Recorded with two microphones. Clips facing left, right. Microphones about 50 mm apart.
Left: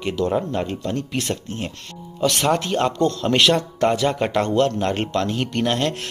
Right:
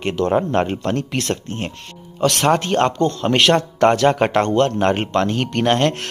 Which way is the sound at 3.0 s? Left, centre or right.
Right.